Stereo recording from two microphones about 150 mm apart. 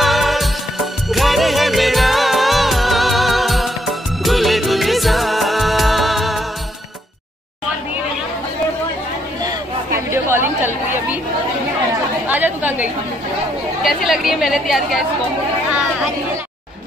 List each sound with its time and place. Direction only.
0.0 s music: centre (ahead or behind)
9.9 s chatter: 15° right (ahead or behind)
12.3 s chatter: 10° right (ahead or behind)
13.8 s a woman's voice: centre (ahead or behind)